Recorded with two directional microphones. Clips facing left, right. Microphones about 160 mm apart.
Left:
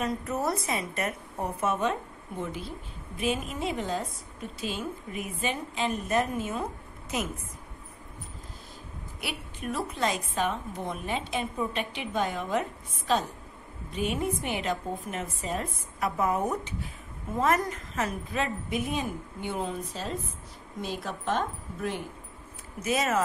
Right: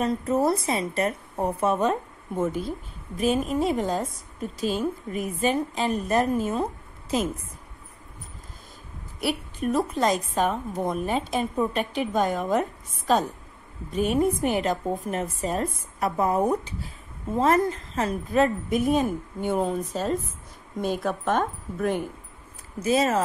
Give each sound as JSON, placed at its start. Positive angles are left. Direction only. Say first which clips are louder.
{"t": 0.0, "sound": "a woman's voice", "louder": "right 6 dB", "side_deg": -30}
{"t": 9.2, "sound": "a woman's voice", "louder": "right 10 dB", "side_deg": -40}
{"t": 18.3, "sound": "a woman's voice", "louder": "right 8 dB", "side_deg": -45}
{"t": 22.8, "sound": "a woman's voice", "louder": "right 5 dB", "side_deg": -30}